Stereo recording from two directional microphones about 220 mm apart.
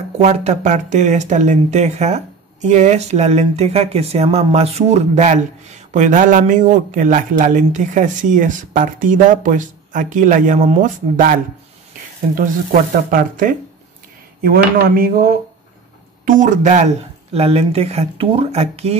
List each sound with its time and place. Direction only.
0.2 s speech: 30° right (ahead or behind)
12.4 s speech: 40° right (ahead or behind)